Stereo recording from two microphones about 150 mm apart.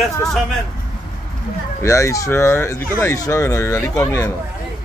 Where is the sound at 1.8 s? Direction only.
20° left (ahead or behind).